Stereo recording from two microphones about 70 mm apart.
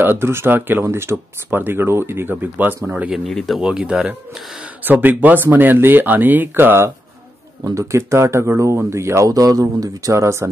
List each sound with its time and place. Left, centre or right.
0.0 s speech: right
3.3 s speech: centre
3.5 s speech: centre; by 6.9 s right
7.6 s speech: right
9.3 s speech: right